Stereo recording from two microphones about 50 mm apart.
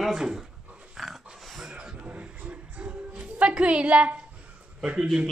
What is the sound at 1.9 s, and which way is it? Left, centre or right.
Music, right.